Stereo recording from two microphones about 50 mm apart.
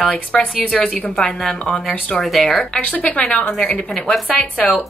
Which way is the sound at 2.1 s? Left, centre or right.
Centre.